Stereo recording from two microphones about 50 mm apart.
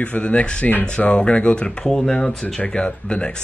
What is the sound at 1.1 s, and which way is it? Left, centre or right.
Speech, left.